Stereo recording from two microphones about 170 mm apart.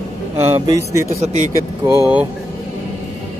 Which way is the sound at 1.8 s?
15° right (ahead or behind).